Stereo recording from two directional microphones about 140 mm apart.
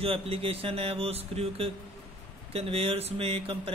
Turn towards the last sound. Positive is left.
turn(degrees=-40)  # may be behind; listen again after turning